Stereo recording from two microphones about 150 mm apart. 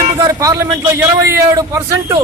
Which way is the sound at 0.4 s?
20° right (ahead or behind).